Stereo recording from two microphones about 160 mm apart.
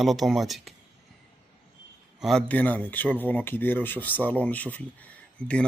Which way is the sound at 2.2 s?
Centre (ahead or behind).